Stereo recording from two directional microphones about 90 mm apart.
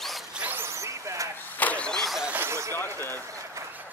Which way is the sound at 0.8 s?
35° right (ahead or behind).